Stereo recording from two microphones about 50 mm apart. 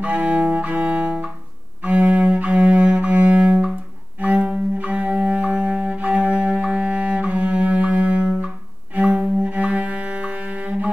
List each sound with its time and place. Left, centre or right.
0.0 s music: right
1.8 s cello: right
4.2 s bowed string instrument: right
4.8 s music: right
8.9 s cello: right